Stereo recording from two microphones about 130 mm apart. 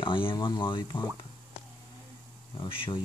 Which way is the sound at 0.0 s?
40° left (ahead or behind).